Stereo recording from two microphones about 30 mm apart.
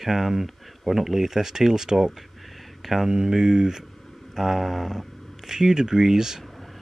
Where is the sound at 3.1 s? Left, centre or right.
Right.